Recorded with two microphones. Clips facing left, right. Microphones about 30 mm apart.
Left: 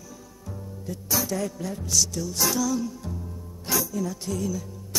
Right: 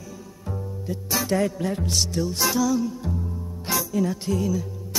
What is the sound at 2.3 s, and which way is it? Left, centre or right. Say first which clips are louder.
Music: right 2 dB; right.